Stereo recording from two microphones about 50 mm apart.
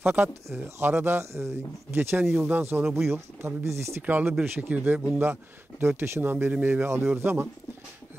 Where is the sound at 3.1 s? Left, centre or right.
Right.